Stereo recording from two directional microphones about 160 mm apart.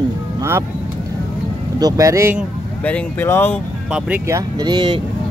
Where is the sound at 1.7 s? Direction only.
20° right (ahead or behind).